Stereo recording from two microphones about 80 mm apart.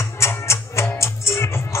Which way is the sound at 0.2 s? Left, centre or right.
Left.